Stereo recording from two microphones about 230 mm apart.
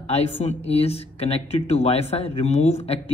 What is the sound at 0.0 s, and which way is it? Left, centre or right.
Speech, left.